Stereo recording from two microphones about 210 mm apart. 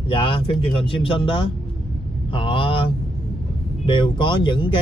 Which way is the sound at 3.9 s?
20° left (ahead or behind).